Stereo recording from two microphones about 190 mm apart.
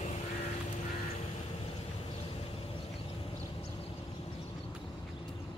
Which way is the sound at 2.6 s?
30° left (ahead or behind).